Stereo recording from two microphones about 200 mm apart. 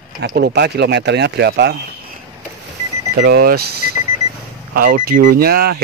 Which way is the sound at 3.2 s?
55° right (ahead or behind).